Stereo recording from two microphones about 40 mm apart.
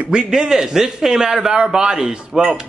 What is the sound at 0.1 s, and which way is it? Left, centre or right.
A man's voice, centre.